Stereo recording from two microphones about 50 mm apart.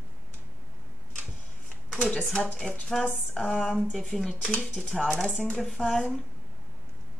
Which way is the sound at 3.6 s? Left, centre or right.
Centre.